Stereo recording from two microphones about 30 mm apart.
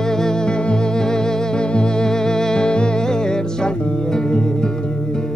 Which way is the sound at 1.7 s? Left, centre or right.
Left.